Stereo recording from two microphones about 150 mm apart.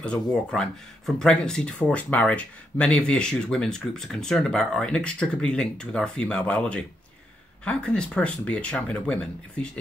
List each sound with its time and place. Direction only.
0.0 s speech: 5° left (ahead or behind)